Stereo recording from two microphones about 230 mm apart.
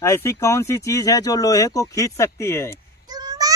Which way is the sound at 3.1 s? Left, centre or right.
Centre.